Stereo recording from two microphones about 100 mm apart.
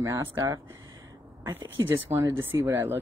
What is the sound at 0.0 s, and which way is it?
Speech, 25° right (ahead or behind).